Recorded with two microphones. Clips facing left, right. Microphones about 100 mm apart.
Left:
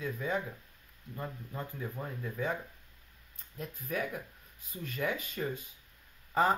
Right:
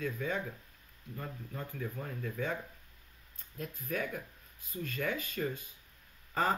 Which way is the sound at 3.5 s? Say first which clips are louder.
Left 1 dB; 15° left (ahead or behind).